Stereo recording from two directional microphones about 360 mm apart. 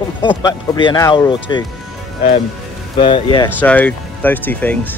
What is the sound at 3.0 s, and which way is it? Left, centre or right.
Speech, centre.